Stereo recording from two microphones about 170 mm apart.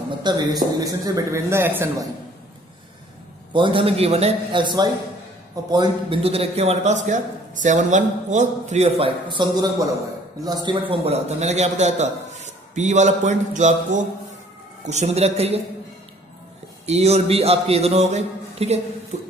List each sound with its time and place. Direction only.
0.2 s a man's voice: 25° right (ahead or behind)
3.5 s a man's voice: 30° right (ahead or behind)
16.8 s a man's voice: 40° right (ahead or behind)